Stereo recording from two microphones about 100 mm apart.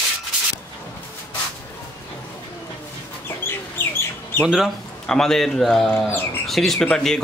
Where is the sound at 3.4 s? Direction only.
25° left (ahead or behind).